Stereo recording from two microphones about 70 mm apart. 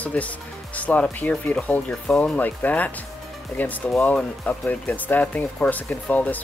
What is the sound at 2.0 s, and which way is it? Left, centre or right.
Speech, centre.